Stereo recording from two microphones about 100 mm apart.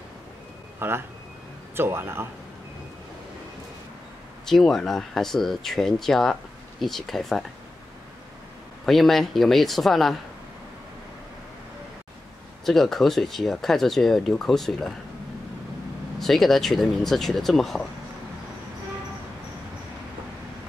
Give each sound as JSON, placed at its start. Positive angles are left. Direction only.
{"t": 0.7, "sound": "speech", "side_deg": -25}
{"t": 4.5, "sound": "speech", "side_deg": 5}
{"t": 8.8, "sound": "speech", "side_deg": 0}
{"t": 12.6, "sound": "speech", "side_deg": 0}
{"t": 16.2, "sound": "speech", "side_deg": 0}